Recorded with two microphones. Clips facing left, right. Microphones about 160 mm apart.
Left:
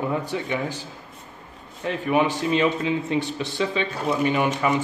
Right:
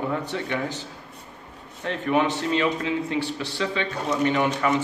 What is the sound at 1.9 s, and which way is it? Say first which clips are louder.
A man's voice: left 1 dB; 10° left (ahead or behind).